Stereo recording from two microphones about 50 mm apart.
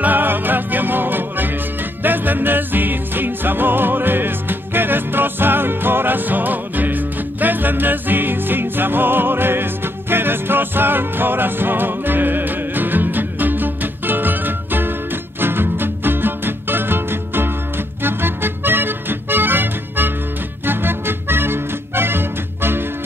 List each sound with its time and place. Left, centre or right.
0.0 s music: right